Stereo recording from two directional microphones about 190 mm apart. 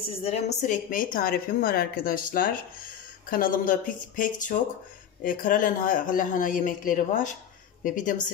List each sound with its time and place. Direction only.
0.2 s a woman's voice: 35° left (ahead or behind)